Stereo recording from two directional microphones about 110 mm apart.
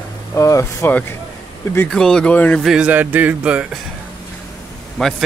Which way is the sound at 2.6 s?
5° right (ahead or behind).